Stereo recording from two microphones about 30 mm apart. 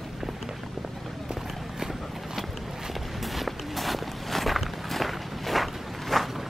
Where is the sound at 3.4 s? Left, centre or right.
Centre.